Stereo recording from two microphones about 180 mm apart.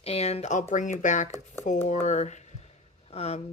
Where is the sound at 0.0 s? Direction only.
35° left (ahead or behind).